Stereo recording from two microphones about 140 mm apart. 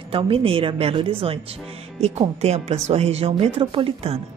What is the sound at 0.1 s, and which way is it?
A woman's voice, 40° right (ahead or behind).